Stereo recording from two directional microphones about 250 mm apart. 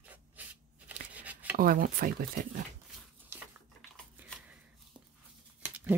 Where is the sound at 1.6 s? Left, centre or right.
Right.